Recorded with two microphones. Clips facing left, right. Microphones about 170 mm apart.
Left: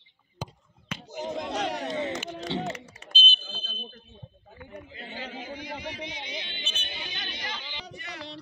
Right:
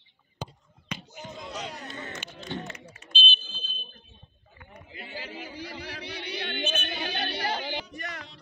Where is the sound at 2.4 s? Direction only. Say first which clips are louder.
Left 4 dB; 85° left.